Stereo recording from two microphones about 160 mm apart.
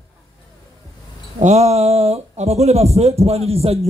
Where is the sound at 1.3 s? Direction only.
45° right (ahead or behind).